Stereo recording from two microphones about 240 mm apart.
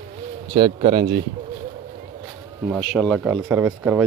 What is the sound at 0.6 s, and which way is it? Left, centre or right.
Speech, right.